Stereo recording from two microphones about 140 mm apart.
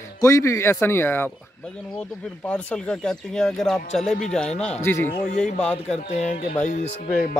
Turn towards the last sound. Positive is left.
turn(degrees=55)  # may be behind; listen again after turning